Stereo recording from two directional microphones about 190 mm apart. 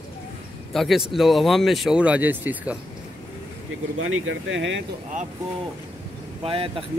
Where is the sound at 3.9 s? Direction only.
90° right.